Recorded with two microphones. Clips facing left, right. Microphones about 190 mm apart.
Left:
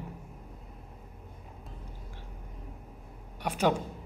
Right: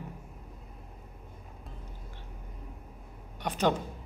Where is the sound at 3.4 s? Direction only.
10° left (ahead or behind).